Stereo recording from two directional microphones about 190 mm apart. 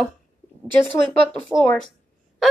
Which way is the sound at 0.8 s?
5° left (ahead or behind).